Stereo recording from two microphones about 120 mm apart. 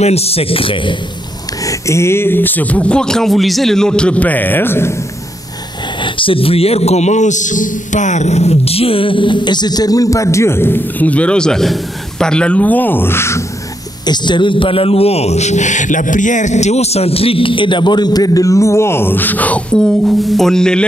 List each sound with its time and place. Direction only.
0.0 s a man's voice: 60° left (ahead or behind)
1.6 s speech: 25° left (ahead or behind)
5.9 s a man's voice: 45° left (ahead or behind); by 13.4 s 20° left (ahead or behind)
14.0 s a man's voice: 40° left (ahead or behind); by 20.8 s 5° left (ahead or behind)